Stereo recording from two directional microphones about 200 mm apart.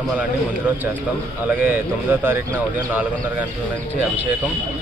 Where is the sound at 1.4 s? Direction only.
10° right (ahead or behind).